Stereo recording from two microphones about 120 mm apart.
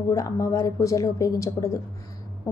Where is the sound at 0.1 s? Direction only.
25° left (ahead or behind).